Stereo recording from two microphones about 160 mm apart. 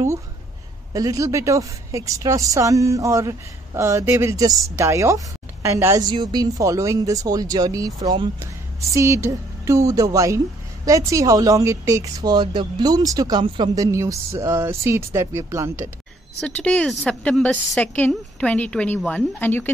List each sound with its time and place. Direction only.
0.9 s a woman's voice: 20° right (ahead or behind)
16.3 s a woman's voice: 5° left (ahead or behind)